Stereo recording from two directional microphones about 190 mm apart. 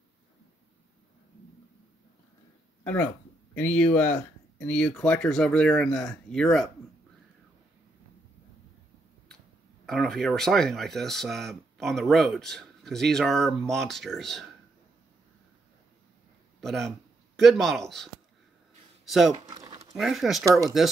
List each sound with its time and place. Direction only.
2.8 s speech: 10° left (ahead or behind)
9.8 s speech: centre (ahead or behind)
16.6 s speech: centre (ahead or behind)
19.4 s a sound: 20° right (ahead or behind)
20.0 s speech: centre (ahead or behind)